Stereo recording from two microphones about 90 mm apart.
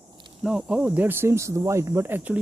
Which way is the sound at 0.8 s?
25° right (ahead or behind).